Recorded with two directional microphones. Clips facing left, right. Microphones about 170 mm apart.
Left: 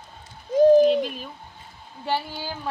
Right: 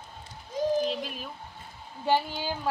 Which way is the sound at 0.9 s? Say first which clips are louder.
Left 11 dB; centre (ahead or behind).